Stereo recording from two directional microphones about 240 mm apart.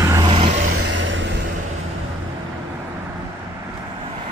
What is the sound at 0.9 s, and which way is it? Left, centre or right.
Vehicle, right.